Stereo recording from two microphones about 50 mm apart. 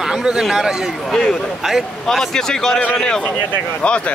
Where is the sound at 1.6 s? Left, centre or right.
Centre.